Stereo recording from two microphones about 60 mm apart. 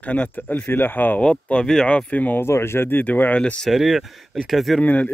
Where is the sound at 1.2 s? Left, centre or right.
Centre.